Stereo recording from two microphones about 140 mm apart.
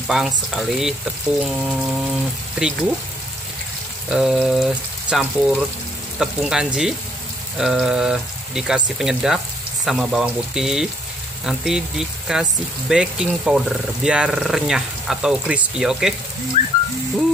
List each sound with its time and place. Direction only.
0.1 s speech: 5° right (ahead or behind)
4.1 s speech: 5° right (ahead or behind)